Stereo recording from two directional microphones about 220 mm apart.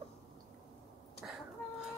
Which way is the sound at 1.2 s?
5° right (ahead or behind).